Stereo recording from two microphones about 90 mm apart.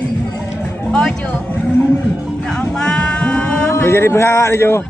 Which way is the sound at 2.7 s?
10° left (ahead or behind).